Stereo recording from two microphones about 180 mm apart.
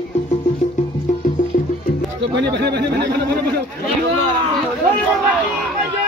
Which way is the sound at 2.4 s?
70° right (ahead or behind).